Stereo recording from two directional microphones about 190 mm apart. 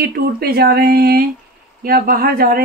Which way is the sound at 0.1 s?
55° right (ahead or behind).